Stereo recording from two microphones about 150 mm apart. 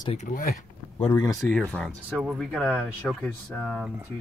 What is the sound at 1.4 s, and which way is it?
Speech, 5° left (ahead or behind).